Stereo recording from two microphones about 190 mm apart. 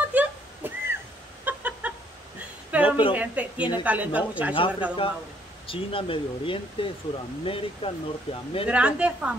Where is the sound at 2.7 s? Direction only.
10° right (ahead or behind).